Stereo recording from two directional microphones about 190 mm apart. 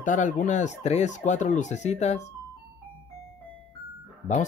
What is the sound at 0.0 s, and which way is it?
Speech, 40° left (ahead or behind).